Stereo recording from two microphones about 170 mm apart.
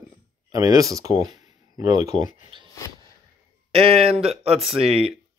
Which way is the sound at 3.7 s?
35° right (ahead or behind).